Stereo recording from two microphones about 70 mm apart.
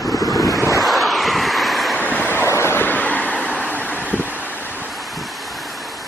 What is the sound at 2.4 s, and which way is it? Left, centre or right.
Vehicle, left.